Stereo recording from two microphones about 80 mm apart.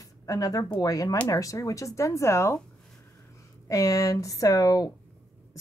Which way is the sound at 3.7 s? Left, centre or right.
Left.